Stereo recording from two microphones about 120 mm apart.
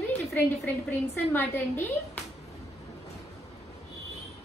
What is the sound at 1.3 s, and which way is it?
Speech, 15° left (ahead or behind).